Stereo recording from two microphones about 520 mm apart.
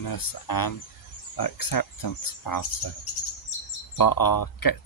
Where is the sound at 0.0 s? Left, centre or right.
Left.